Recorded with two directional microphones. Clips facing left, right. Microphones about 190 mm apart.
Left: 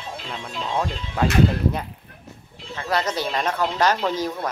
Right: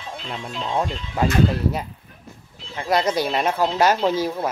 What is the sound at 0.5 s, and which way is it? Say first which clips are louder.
Speech: right 1 dB; 15° right (ahead or behind).